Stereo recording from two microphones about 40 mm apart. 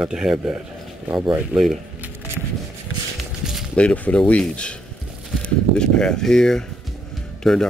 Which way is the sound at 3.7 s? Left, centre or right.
Left.